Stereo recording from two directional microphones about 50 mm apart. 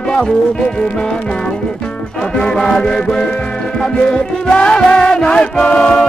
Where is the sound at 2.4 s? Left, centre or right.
Centre.